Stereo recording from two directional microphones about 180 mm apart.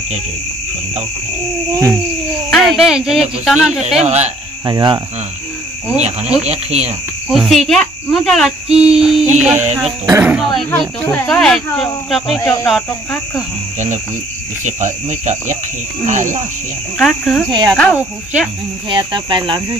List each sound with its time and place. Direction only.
2.5 s speech: centre (ahead or behind)
4.0 s cricket: 40° right (ahead or behind)
4.6 s speech: 25° right (ahead or behind)
6.4 s cricket: 35° right (ahead or behind)
7.2 s speech: centre (ahead or behind)
14.6 s speech: 40° right (ahead or behind)
17.0 s speech: 5° left (ahead or behind)
17.5 s speech: 25° right (ahead or behind)
17.9 s speech: 5° right (ahead or behind)
18.9 s speech: 25° right (ahead or behind)